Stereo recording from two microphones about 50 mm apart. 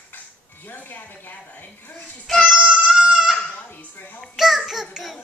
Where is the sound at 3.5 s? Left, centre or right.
Left.